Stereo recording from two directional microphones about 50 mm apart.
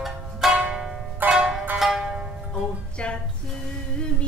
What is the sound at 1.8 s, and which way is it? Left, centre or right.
Music, centre.